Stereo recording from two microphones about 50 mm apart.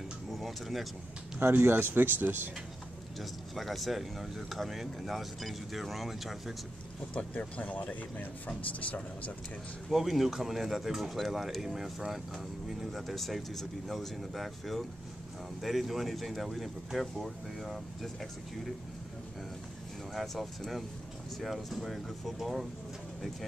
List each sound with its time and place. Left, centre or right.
0.3 s a sound: centre
1.6 s speech: right
3.2 s speech: centre
7.3 s speech: left
9.8 s speech: centre
20.2 s speech: centre